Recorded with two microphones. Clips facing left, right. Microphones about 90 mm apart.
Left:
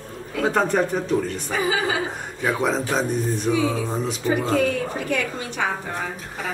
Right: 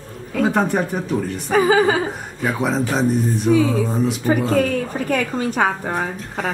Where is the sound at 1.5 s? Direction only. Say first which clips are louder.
Right 11 dB; 45° right (ahead or behind).